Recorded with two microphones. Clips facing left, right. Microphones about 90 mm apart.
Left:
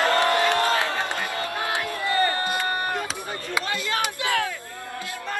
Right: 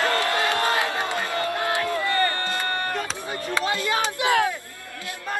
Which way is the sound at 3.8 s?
20° right (ahead or behind).